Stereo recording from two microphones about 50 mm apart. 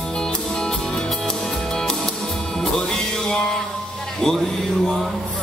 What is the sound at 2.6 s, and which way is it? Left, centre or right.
Music, centre.